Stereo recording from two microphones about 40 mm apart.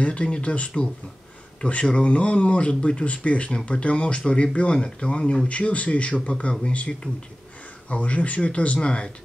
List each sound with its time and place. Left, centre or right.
0.0 s speech: left
5.5 s speech: left